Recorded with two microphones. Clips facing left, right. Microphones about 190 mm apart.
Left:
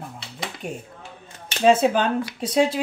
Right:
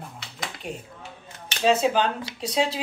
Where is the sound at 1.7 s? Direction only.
50° left (ahead or behind).